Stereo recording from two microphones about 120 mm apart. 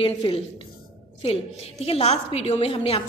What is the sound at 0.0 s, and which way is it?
A woman's voice, 50° left (ahead or behind).